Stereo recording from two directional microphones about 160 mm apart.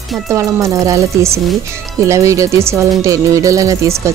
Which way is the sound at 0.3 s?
20° right (ahead or behind).